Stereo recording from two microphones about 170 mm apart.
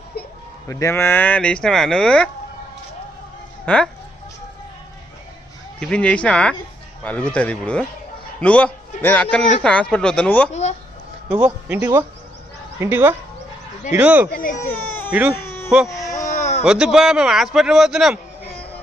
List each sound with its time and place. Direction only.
0.7 s a man's voice: 15° left (ahead or behind)
3.6 s speech: 5° left (ahead or behind)
5.8 s a man's voice: 5° left (ahead or behind)
10.5 s speech: 40° left (ahead or behind)
11.3 s speech: 10° right (ahead or behind)
14.3 s speech: 55° left (ahead or behind)
14.7 s baby cry: 10° left (ahead or behind)
15.0 s speech: 10° right (ahead or behind)
15.3 s a sound: 15° left (ahead or behind)
16.1 s bleat: 45° left (ahead or behind)
16.6 s a man's voice: 5° right (ahead or behind)